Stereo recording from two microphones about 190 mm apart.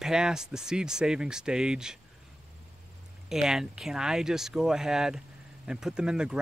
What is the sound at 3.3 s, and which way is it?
Speech, centre (ahead or behind).